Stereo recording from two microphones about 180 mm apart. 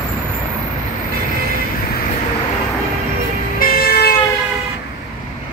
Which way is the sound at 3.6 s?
55° left (ahead or behind).